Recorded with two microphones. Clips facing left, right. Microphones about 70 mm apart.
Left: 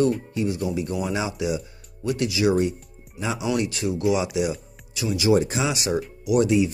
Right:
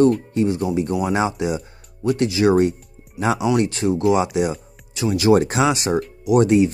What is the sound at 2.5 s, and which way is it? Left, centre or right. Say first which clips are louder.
Speech: right 5 dB; right.